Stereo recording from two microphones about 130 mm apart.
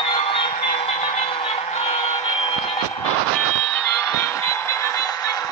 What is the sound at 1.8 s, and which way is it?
Vehicle, 45° left (ahead or behind).